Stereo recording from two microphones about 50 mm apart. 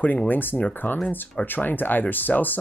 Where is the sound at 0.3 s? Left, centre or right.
Left.